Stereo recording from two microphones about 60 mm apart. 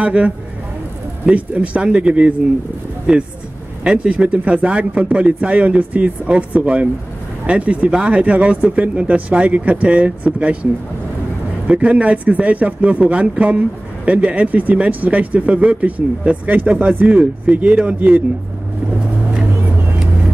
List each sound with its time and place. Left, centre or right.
0.0 s speech: right
1.3 s speech: right